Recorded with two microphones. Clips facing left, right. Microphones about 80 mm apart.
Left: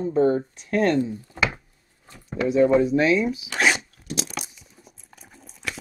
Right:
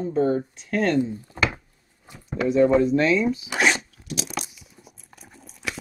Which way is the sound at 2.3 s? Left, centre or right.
Centre.